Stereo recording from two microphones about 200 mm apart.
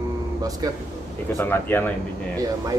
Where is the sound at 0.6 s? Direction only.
20° right (ahead or behind).